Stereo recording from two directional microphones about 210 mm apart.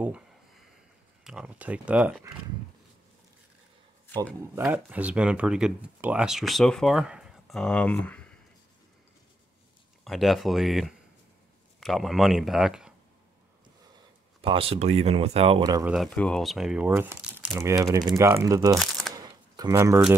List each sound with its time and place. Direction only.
1.2 s speech: 5° right (ahead or behind)
4.4 s speech: 10° right (ahead or behind); by 8.3 s 5° left (ahead or behind)
10.0 s speech: centre (ahead or behind)
14.4 s speech: 25° right (ahead or behind)
15.8 s speech: centre (ahead or behind); by 18.8 s 15° right (ahead or behind)
18.8 s a sound: centre (ahead or behind)
19.1 s camera: 20° right (ahead or behind)